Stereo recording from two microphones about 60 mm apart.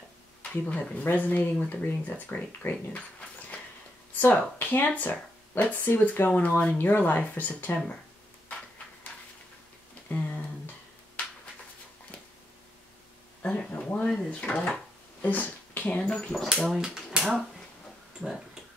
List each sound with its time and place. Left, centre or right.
0.4 s speech: left
4.3 s speech: left
10.0 s a sound: left
13.4 s speech: centre
15.2 s speech: left; by 16.4 s centre
16.7 s speech: centre